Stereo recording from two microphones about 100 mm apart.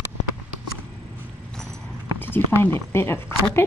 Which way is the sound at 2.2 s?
20° left (ahead or behind).